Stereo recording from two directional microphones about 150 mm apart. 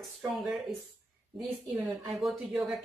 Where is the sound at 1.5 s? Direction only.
15° right (ahead or behind).